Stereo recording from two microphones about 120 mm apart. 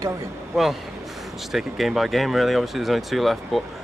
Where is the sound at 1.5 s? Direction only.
Centre (ahead or behind).